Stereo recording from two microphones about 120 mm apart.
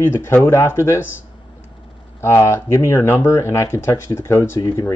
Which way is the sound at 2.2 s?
20° left (ahead or behind).